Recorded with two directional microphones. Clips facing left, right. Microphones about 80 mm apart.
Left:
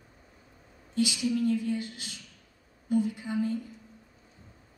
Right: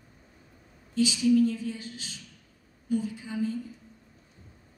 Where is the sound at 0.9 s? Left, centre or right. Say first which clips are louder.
Right 5 dB; left.